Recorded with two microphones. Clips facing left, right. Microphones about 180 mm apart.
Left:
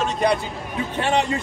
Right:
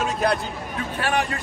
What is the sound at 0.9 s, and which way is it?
Speech, 20° left (ahead or behind).